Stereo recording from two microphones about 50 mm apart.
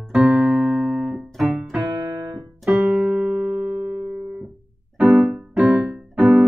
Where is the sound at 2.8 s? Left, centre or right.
Right.